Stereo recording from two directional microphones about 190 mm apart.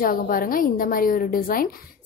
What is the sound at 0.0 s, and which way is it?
A woman's voice, 45° left (ahead or behind).